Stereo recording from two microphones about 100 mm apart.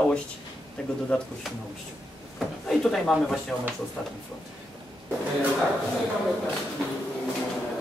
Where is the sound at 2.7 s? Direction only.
5° left (ahead or behind).